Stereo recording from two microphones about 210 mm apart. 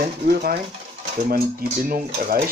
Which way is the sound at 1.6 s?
45° right (ahead or behind).